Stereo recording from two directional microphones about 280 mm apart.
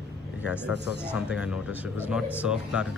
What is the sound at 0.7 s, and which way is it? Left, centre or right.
Speech, centre.